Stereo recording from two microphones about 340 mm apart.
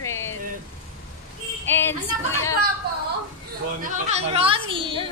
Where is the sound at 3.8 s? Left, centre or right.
Right.